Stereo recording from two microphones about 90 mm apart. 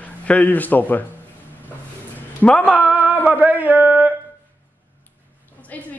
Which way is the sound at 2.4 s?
15° left (ahead or behind).